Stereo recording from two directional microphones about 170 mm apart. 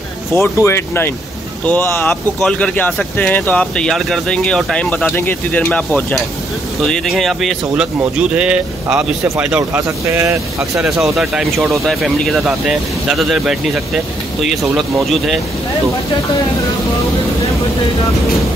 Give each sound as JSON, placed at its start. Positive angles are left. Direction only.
{"t": 0.3, "sound": "speech", "side_deg": 15}
{"t": 10.8, "sound": "speech", "side_deg": -5}